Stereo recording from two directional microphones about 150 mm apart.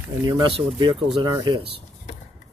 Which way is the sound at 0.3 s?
35° right (ahead or behind).